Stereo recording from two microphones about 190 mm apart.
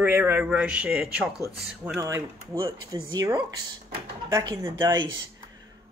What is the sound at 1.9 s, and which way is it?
Speech, 15° right (ahead or behind).